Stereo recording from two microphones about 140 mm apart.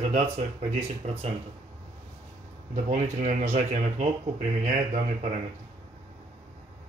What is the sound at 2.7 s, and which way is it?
Speech, 55° right (ahead or behind).